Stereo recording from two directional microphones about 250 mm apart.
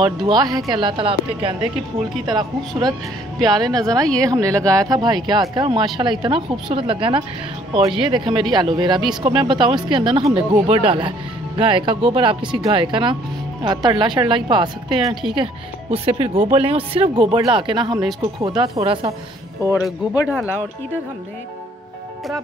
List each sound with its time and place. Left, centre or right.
0.0 s speech: centre
3.3 s speech: centre
19.6 s speech: centre